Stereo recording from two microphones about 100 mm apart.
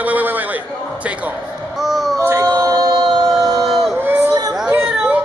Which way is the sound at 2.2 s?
30° right (ahead or behind).